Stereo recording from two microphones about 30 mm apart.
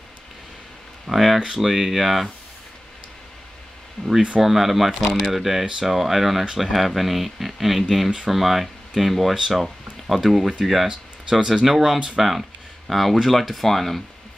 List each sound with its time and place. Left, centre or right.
1.1 s speech: centre
4.0 s speech: centre
4.4 s speech: centre
10.9 s speech: centre